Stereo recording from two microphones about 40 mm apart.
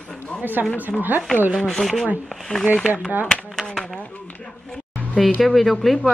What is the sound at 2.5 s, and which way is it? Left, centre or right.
Speech, left.